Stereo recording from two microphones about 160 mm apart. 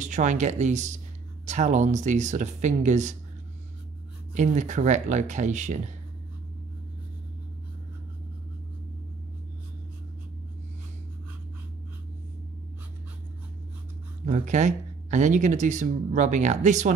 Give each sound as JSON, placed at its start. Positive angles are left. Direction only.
{"t": 0.0, "sound": "speech", "side_deg": -50}
{"t": 4.3, "sound": "speech", "side_deg": -50}
{"t": 14.2, "sound": "speech", "side_deg": -50}